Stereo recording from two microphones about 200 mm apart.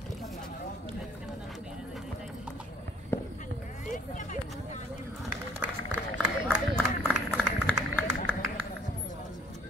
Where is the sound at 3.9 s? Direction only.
40° left (ahead or behind).